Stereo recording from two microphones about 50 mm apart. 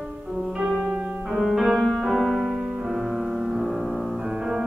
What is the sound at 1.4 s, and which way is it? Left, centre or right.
Music, centre.